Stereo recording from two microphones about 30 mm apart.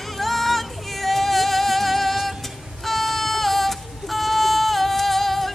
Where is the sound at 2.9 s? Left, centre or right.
Centre.